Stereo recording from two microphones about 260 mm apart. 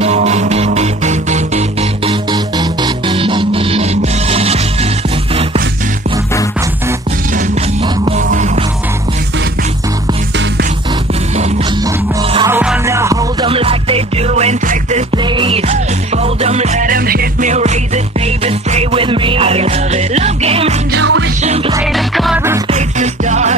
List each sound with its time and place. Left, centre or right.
0.0 s music: right
8.2 s music: right
12.2 s music: centre
20.9 s music: right
21.4 s music: right
21.9 s music: centre
22.7 s music: right